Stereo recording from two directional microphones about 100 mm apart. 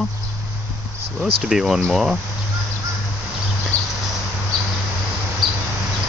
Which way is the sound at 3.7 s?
35° right (ahead or behind).